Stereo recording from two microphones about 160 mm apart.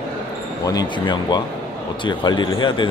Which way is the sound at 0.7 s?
25° left (ahead or behind).